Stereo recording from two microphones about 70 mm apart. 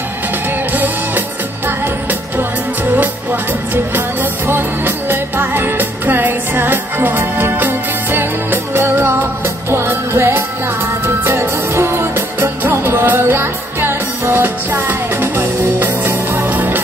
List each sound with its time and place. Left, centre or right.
3.7 s music: right